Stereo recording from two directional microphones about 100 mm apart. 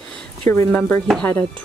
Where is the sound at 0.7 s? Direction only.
15° left (ahead or behind).